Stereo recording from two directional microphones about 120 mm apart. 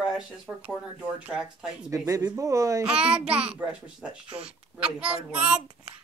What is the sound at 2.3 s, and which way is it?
Speech, 25° right (ahead or behind).